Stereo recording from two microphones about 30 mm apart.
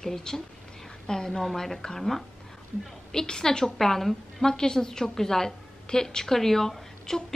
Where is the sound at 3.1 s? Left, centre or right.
Left.